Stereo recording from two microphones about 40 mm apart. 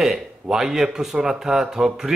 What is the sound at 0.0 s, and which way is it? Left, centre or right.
Speech, centre.